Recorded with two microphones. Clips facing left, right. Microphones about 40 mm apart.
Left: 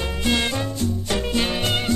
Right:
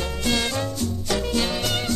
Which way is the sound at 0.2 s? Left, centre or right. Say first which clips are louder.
Left 2 dB; left.